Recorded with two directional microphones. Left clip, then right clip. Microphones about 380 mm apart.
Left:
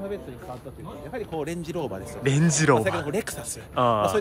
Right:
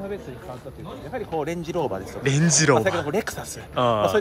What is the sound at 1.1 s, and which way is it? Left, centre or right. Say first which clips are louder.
Speech: right 4 dB; centre.